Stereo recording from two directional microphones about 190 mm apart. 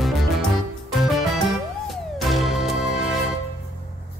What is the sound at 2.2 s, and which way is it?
Music, centre (ahead or behind).